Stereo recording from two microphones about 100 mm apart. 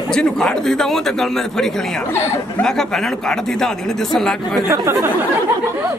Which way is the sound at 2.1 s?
25° left (ahead or behind).